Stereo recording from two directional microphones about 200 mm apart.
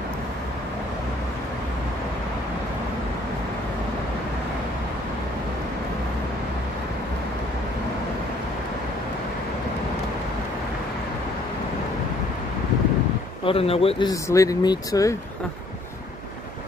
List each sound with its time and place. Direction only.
13.5 s speech: 30° left (ahead or behind)